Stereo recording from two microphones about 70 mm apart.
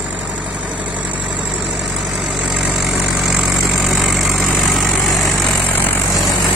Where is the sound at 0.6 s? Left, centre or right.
Centre.